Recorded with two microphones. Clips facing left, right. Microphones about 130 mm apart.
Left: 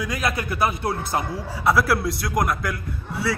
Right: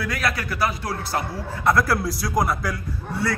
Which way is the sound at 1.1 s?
10° left (ahead or behind).